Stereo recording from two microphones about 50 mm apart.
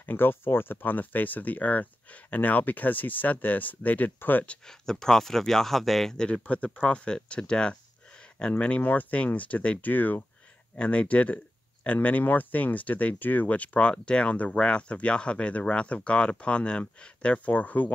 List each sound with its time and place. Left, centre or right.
0.0 s speech: left
4.6 s speech: centre
6.1 s speech: centre
6.4 s speech: left
6.8 s speech: centre; by 10.2 s left
10.8 s speech: left